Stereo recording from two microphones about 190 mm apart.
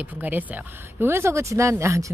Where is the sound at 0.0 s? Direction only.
10° right (ahead or behind).